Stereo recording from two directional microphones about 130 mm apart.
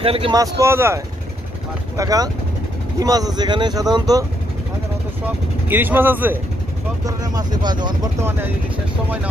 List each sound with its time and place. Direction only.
0.0 s speech: 45° right (ahead or behind)
0.3 s speech: 25° right (ahead or behind)
5.2 s speech: 15° right (ahead or behind)
7.1 s speech: 30° right (ahead or behind)
8.2 s speech: 15° right (ahead or behind)